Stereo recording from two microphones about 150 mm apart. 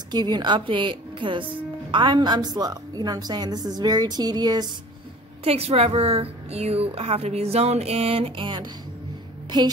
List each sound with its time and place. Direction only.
0.1 s a woman's voice: 30° right (ahead or behind)
5.4 s a woman's voice: 40° right (ahead or behind)